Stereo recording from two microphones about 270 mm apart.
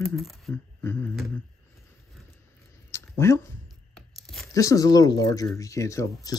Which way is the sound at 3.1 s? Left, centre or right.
Centre.